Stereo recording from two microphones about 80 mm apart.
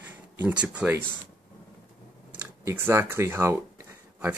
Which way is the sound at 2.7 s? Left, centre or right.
Right.